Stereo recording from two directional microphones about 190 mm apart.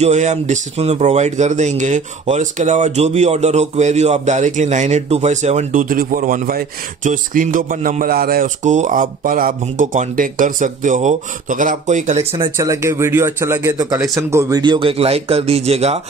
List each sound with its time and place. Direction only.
0.0 s speech: 40° right (ahead or behind)
12.5 s speech: 15° right (ahead or behind); by 16.0 s 35° right (ahead or behind)